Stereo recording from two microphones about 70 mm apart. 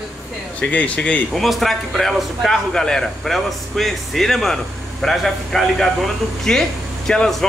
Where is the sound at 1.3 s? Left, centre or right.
Centre.